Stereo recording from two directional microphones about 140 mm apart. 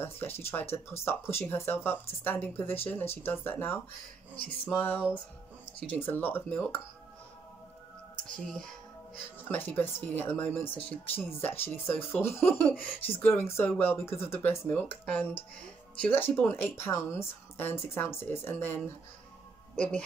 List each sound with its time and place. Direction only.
0.0 s speech: 15° left (ahead or behind)
8.3 s speech: 5° left (ahead or behind)
9.4 s speech: 15° left (ahead or behind)